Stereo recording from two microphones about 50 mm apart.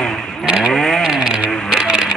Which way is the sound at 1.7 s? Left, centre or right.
Centre.